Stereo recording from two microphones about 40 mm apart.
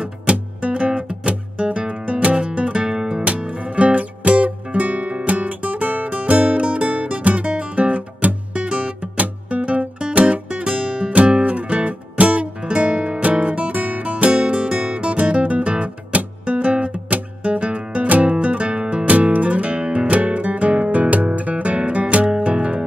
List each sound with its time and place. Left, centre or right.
0.0 s music: right
3.3 s music: right